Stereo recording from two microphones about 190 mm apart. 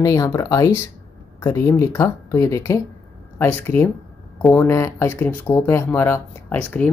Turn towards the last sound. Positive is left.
turn(degrees=10)  # may be behind; listen again after turning